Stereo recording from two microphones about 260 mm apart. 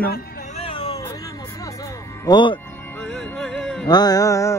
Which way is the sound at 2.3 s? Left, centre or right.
Centre.